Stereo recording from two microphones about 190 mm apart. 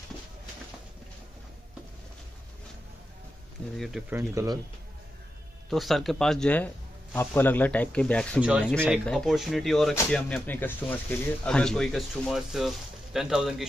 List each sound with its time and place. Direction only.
3.7 s speech: centre (ahead or behind)
4.1 s speech: 15° right (ahead or behind)
5.7 s speech: centre (ahead or behind)
8.4 s speech: 5° right (ahead or behind)
8.6 s speech: 5° left (ahead or behind)